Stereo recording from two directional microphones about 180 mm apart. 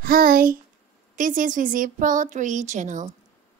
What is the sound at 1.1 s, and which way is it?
A woman's voice, 45° right (ahead or behind).